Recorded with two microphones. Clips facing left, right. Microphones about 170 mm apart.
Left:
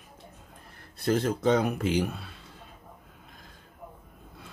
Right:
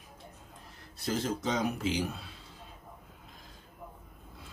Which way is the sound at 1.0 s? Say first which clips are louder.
Left 7 dB; 60° left (ahead or behind).